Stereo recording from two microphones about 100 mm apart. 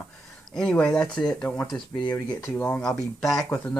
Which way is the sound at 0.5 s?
10° left (ahead or behind).